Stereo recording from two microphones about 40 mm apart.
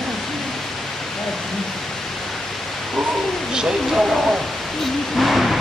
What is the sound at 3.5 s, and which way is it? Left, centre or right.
Speech, centre.